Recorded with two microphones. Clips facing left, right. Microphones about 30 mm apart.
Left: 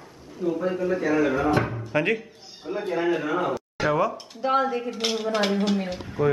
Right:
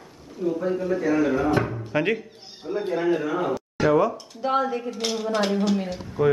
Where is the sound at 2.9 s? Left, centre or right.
Centre.